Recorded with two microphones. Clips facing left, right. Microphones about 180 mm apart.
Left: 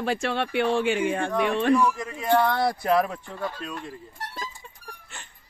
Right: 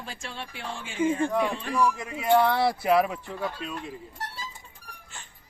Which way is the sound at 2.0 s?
5° right (ahead or behind).